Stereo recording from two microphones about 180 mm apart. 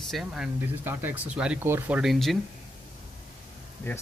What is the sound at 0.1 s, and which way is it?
Speech, centre (ahead or behind).